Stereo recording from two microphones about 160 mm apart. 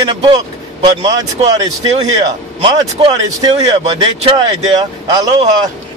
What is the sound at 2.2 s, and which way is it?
A man's voice, 30° right (ahead or behind).